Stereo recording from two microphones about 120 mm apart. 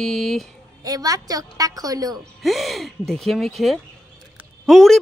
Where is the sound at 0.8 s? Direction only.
30° right (ahead or behind).